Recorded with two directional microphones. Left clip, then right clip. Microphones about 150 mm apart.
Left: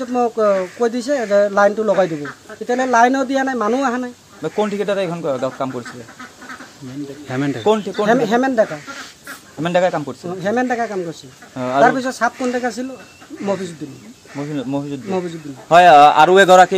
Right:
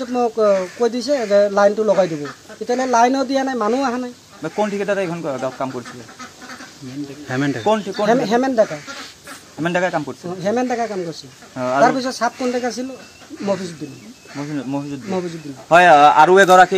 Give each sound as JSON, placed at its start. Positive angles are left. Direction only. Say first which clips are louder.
{"t": 0.0, "sound": "speech", "louder": "left 1 dB", "side_deg": 5}
{"t": 4.4, "sound": "speech", "louder": "left 1 dB", "side_deg": 90}
{"t": 7.2, "sound": "speech", "louder": "right 1 dB", "side_deg": 0}
{"t": 7.6, "sound": "speech", "louder": "left 2 dB", "side_deg": 75}
{"t": 8.1, "sound": "speech", "louder": "left 1 dB", "side_deg": 5}
{"t": 9.6, "sound": "speech", "louder": "left 3 dB", "side_deg": 85}
{"t": 10.2, "sound": "speech", "louder": "left 2 dB", "side_deg": 5}
{"t": 11.5, "sound": "speech", "louder": "even", "side_deg": 70}
{"t": 11.8, "sound": "speech", "louder": "left 2 dB", "side_deg": 5}
{"t": 14.5, "sound": "speech", "louder": "left 2 dB", "side_deg": 70}
{"t": 15.0, "sound": "speech", "louder": "left 1 dB", "side_deg": 0}
{"t": 15.7, "sound": "speech", "louder": "left 2 dB", "side_deg": 80}
{"t": 16.3, "sound": "a man's voice", "louder": "left 1 dB", "side_deg": 35}